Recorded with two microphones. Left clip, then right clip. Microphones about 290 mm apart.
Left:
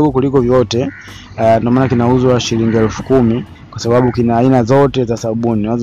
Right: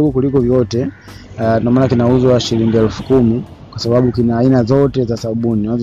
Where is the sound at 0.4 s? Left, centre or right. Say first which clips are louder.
Left 3 dB; left.